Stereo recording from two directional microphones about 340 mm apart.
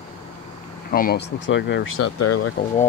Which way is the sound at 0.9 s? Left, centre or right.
Left.